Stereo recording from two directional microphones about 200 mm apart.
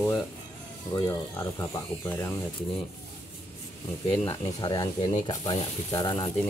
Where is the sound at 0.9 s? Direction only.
20° left (ahead or behind).